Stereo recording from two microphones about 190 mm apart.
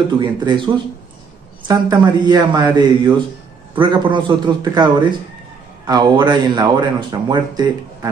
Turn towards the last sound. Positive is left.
turn(degrees=-20)  # may be behind; listen again after turning